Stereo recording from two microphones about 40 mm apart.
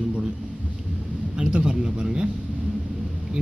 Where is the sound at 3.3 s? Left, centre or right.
Right.